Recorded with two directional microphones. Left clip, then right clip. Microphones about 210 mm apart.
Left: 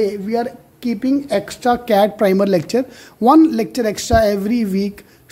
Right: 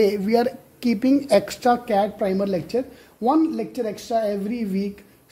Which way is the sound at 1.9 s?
30° left (ahead or behind).